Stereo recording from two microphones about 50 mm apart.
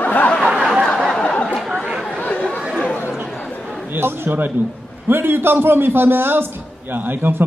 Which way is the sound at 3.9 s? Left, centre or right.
Right.